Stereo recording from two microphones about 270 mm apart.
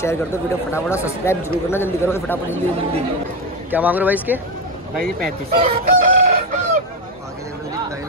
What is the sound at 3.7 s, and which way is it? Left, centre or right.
Speech, centre.